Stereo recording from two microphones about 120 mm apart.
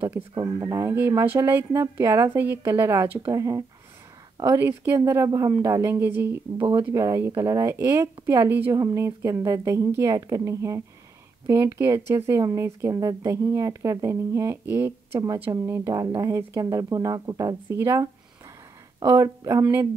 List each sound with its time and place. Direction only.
0.3 s speech: 35° right (ahead or behind)
4.6 s a woman's voice: 20° right (ahead or behind)